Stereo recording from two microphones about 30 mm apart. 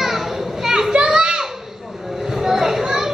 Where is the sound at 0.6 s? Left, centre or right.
Centre.